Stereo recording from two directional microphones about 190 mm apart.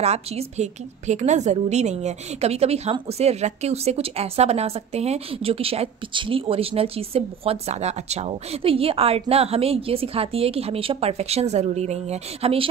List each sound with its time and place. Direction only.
0.0 s a woman's voice: 35° right (ahead or behind)